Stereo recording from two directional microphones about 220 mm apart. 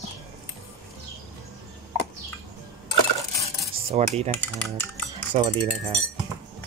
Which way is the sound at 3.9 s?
25° right (ahead or behind).